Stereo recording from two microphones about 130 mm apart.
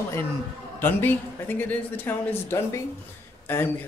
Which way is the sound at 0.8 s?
15° left (ahead or behind).